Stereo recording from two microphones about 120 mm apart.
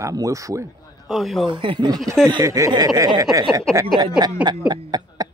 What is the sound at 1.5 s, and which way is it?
Speech, 45° right (ahead or behind).